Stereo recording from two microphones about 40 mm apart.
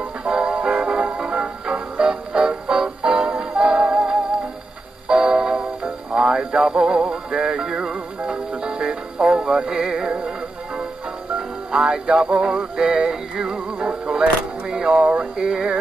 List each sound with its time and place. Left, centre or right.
0.2 s music: right
5.0 s music: right
11.3 s music: centre